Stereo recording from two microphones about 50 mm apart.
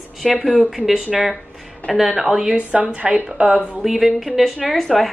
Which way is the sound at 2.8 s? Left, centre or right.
Right.